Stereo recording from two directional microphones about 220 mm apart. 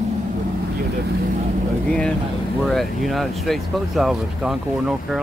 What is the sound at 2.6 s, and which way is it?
Speech, centre (ahead or behind).